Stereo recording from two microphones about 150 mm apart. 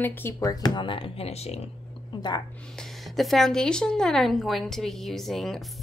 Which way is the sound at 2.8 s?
Centre (ahead or behind).